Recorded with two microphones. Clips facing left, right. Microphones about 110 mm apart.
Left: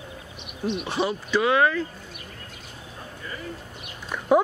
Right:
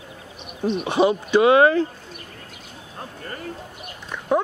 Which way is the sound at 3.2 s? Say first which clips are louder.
Right 2 dB; 55° right (ahead or behind).